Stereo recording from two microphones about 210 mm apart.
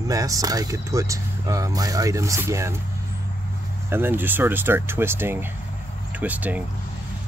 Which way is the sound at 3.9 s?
10° right (ahead or behind).